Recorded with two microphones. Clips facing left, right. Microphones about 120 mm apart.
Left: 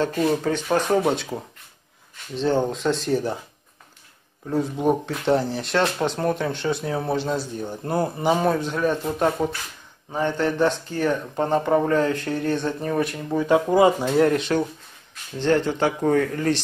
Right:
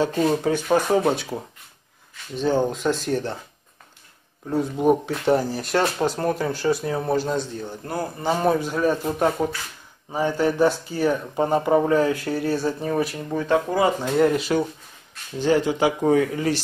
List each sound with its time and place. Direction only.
0.4 s speech: 10° right (ahead or behind)
4.5 s speech: centre (ahead or behind)
7.5 s a man's voice: 20° left (ahead or behind)
8.4 s speech: 5° right (ahead or behind)
13.4 s speech: 15° left (ahead or behind)
14.1 s speech: centre (ahead or behind)